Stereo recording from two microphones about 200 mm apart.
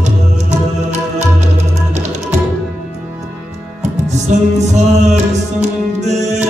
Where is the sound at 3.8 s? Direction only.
35° right (ahead or behind).